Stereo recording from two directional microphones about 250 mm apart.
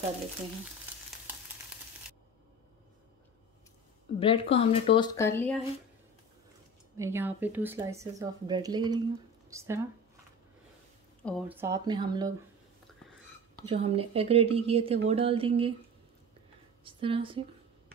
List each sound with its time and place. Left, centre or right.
4.2 s speech: left
7.0 s speech: centre
11.2 s speech: centre
13.6 s a woman's voice: right
16.8 s speech: centre